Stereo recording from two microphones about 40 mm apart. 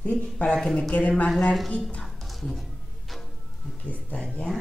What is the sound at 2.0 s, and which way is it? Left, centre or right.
Music, centre.